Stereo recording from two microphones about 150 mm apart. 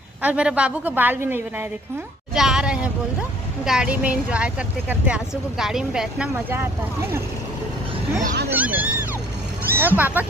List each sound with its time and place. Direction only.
0.2 s speech: 10° right (ahead or behind)
6.3 s speech: 15° right (ahead or behind)
8.5 s speech: 10° right (ahead or behind)